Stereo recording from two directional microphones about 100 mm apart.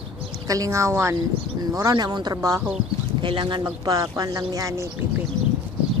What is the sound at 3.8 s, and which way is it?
Speech, 40° right (ahead or behind).